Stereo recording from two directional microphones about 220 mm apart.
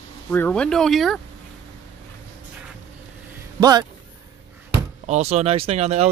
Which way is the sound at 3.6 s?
15° right (ahead or behind).